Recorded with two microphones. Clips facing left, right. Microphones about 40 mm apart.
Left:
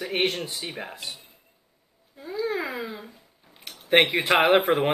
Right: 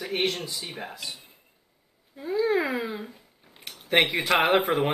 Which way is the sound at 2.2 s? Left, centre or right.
Centre.